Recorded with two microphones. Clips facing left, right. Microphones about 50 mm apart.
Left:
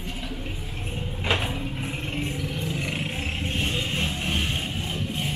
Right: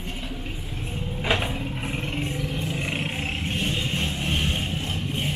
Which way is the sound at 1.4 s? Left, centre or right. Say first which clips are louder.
Right 1 dB; centre.